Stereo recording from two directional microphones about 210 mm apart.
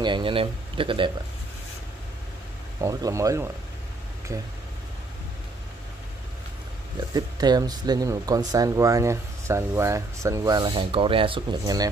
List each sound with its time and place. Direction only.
0.0 s speech: 25° right (ahead or behind)
2.8 s speech: 15° right (ahead or behind)
7.2 s speech: 20° right (ahead or behind)